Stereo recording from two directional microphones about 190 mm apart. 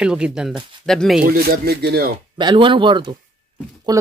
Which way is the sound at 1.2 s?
55° right (ahead or behind).